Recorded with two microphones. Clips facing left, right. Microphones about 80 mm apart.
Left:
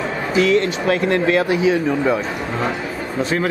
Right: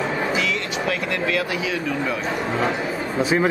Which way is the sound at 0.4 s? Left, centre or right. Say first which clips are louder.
Left 8 dB; left.